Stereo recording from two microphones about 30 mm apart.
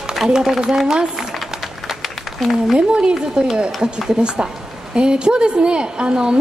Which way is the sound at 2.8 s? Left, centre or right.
Right.